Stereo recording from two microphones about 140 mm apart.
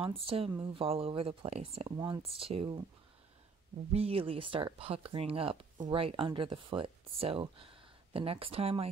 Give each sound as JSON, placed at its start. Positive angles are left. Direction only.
{"t": 0.0, "sound": "speech", "side_deg": -40}
{"t": 2.0, "sound": "speech", "side_deg": -30}
{"t": 2.2, "sound": "speech", "side_deg": -45}
{"t": 3.9, "sound": "speech", "side_deg": -45}